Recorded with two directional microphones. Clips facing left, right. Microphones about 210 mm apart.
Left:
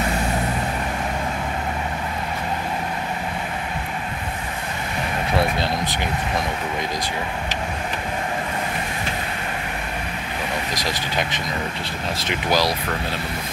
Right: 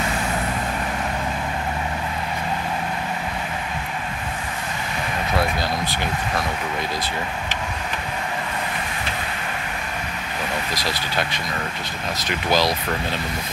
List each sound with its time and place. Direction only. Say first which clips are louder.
5.3 s vehicle: left 1 dB; 25° left (ahead or behind)
10.7 s speech: left 1 dB; 15° left (ahead or behind)
12.4 s speech: right 1 dB; 10° left (ahead or behind)